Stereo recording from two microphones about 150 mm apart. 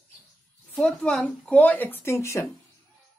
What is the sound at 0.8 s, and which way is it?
A woman's voice, 5° left (ahead or behind).